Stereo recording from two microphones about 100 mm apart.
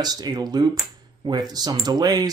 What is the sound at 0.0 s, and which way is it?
Speech, 40° right (ahead or behind).